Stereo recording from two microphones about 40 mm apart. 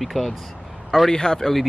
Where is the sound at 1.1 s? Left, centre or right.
Centre.